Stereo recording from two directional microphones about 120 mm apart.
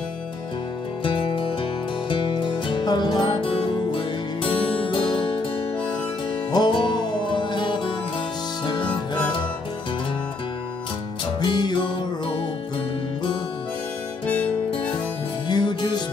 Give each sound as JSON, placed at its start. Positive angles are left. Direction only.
{"t": 1.0, "sound": "music", "side_deg": 45}
{"t": 6.5, "sound": "music", "side_deg": 40}
{"t": 11.4, "sound": "music", "side_deg": 40}
{"t": 14.2, "sound": "harmonica", "side_deg": 10}
{"t": 15.4, "sound": "music", "side_deg": 40}